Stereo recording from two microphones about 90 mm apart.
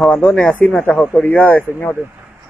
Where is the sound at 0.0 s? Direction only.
5° left (ahead or behind).